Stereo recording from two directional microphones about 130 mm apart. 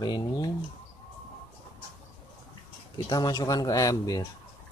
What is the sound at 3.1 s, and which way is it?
Speech, 30° left (ahead or behind).